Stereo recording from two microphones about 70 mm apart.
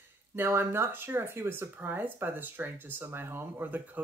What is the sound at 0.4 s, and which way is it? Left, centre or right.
Speech, right.